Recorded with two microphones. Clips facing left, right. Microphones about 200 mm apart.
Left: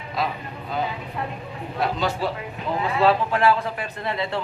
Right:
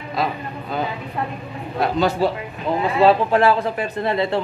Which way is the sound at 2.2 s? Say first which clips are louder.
Right 6 dB; 35° right (ahead or behind).